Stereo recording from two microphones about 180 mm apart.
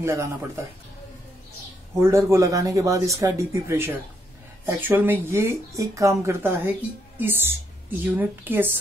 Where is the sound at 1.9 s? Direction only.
15° right (ahead or behind).